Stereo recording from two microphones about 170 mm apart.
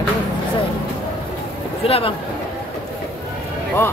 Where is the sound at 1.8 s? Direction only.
35° left (ahead or behind).